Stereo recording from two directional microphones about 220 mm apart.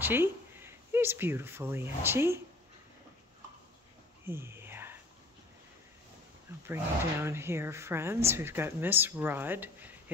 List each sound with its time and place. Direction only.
0.0 s speech: 10° right (ahead or behind)
4.3 s a sound: 10° right (ahead or behind)
6.7 s speech: 10° right (ahead or behind)